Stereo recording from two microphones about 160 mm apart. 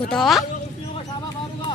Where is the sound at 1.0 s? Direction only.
30° left (ahead or behind).